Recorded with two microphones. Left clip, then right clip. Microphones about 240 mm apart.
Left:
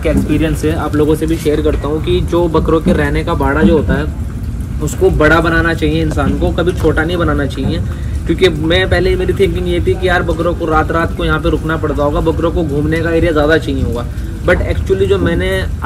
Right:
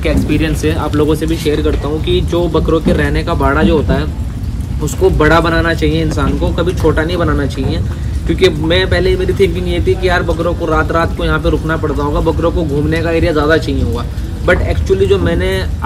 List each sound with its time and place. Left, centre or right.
0.0 s speech: centre
5.2 s speech: centre